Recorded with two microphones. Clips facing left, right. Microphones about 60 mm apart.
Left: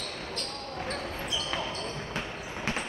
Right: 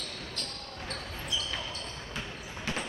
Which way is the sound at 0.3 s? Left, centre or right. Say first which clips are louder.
Left 5 dB; left.